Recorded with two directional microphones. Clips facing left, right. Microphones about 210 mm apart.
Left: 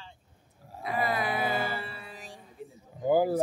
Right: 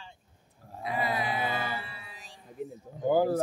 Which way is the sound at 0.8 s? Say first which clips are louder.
Left 1 dB; 50° left (ahead or behind).